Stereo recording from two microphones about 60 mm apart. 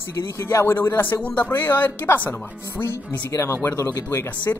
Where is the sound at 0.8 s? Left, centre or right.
Left.